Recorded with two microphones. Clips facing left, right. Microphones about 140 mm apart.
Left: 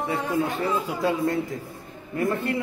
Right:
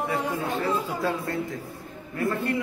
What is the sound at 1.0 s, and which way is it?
Speech, 20° left (ahead or behind).